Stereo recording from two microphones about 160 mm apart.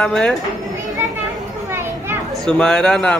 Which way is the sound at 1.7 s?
15° right (ahead or behind).